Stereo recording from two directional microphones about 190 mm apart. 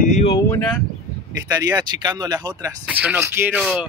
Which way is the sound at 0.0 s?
35° left (ahead or behind).